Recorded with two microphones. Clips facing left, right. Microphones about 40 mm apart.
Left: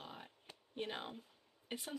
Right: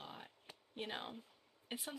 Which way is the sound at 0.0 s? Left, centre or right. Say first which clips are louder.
Even; centre.